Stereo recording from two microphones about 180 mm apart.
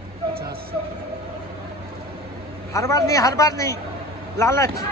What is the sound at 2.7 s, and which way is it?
A woman's voice, 15° left (ahead or behind).